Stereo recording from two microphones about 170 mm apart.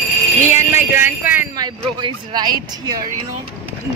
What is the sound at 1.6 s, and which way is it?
Speech, 25° right (ahead or behind).